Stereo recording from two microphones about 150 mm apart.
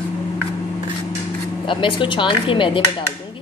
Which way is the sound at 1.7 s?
35° left (ahead or behind).